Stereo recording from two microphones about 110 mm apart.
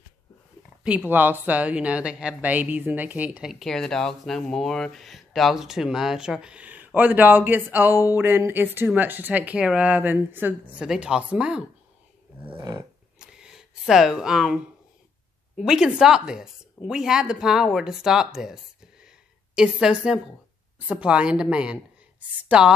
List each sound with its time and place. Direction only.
0.8 s speech: 15° right (ahead or behind)
3.5 s speech: 5° left (ahead or behind)
12.5 s roar: 40° right (ahead or behind)
13.2 s a sound: 5° right (ahead or behind)
15.5 s a woman's voice: 5° right (ahead or behind)